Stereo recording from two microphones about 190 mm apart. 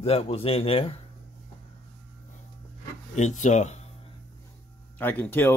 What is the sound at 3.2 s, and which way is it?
Speech, 40° left (ahead or behind).